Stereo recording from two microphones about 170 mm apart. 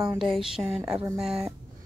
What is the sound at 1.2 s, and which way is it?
Speech, 5° right (ahead or behind).